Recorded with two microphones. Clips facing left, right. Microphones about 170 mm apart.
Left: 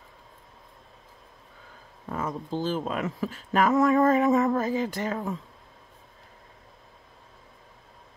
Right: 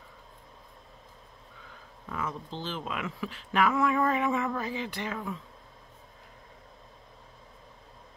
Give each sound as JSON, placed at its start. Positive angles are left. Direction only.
{"t": 2.0, "sound": "speech", "side_deg": 40}